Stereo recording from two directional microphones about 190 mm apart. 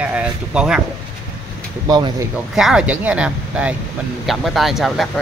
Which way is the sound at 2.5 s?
Centre (ahead or behind).